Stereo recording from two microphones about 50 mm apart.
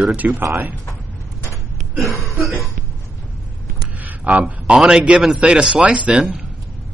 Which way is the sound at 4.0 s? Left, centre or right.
Right.